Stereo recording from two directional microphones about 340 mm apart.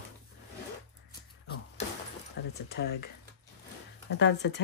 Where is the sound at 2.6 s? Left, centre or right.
Left.